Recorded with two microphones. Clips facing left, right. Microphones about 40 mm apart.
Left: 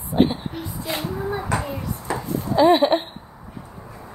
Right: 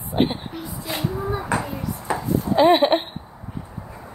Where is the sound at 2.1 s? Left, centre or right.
Right.